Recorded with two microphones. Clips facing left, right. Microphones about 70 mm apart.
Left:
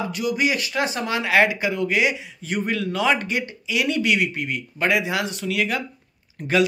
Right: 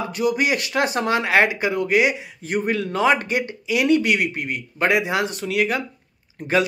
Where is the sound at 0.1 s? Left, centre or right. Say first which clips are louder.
Right 4 dB; right.